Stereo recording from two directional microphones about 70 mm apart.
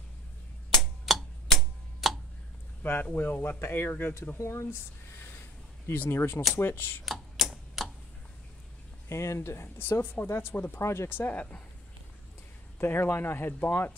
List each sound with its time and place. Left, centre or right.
0.7 s a sound: centre
2.8 s speech: left
5.9 s speech: left
7.1 s a sound: centre
9.1 s speech: left
12.7 s speech: left